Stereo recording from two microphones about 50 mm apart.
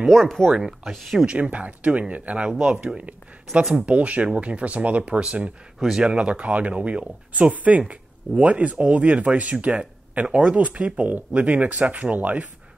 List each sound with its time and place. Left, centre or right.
0.1 s speech: centre
0.6 s speech: centre
1.2 s speech: right
5.8 s speech: centre
6.0 s speech: right
11.1 s speech: right